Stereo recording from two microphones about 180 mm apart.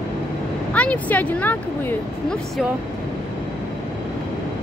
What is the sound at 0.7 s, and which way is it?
Speech, 10° left (ahead or behind).